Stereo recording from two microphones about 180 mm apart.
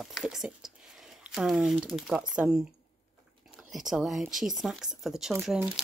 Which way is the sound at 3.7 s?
Centre (ahead or behind).